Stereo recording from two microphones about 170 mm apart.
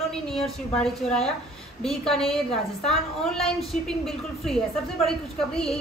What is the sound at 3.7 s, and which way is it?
Speech, centre (ahead or behind).